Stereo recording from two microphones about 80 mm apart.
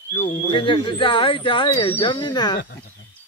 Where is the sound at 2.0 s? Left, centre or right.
Left.